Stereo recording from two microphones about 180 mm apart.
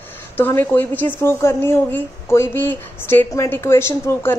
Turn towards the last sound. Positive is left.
turn(degrees=15)  # may be behind; listen again after turning